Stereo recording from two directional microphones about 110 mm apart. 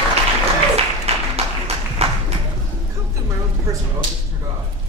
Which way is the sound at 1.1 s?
70° right (ahead or behind).